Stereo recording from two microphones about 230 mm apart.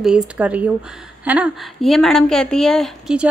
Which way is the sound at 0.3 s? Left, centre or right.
Centre.